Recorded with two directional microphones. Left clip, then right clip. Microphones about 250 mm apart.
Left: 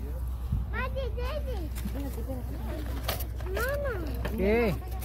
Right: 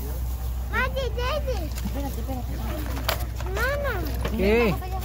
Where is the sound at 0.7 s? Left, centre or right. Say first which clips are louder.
Right 8 dB; right.